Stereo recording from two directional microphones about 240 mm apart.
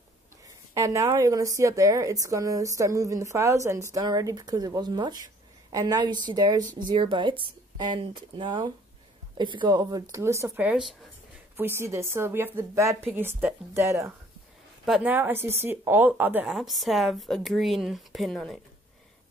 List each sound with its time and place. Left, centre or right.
0.7 s a woman's voice: centre